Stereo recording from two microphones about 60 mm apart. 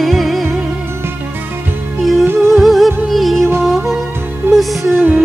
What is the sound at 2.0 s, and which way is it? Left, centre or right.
Music, centre.